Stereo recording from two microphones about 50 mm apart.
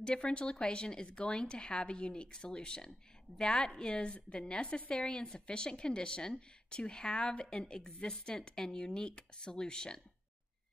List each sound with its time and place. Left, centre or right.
0.0 s a woman's voice: centre